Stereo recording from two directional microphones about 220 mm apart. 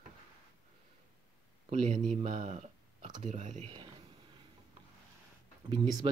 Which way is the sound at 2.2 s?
30° right (ahead or behind).